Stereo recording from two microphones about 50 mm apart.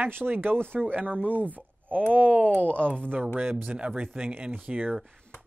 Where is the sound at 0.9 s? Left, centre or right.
Right.